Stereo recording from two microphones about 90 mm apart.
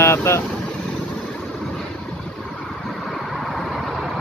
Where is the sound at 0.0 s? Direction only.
30° left (ahead or behind).